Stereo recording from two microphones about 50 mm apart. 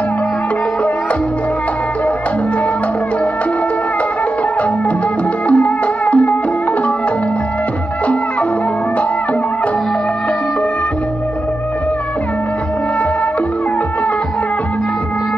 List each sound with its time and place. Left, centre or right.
5.5 s music: left